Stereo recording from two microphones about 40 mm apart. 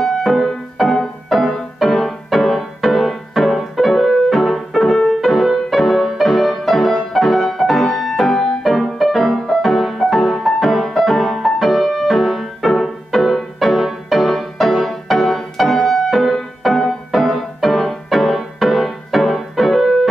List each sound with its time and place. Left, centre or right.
0.0 s music: centre